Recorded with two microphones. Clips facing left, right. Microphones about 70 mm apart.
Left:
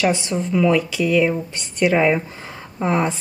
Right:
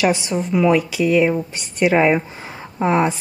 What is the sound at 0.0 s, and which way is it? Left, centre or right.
Speech, centre.